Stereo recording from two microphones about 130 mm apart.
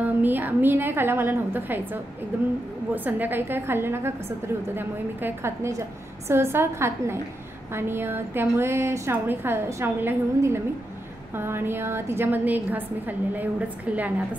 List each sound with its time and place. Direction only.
0.0 s a woman's voice: 15° right (ahead or behind)